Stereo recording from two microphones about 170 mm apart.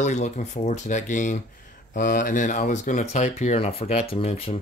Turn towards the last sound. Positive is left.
turn(degrees=35)  # may be behind; listen again after turning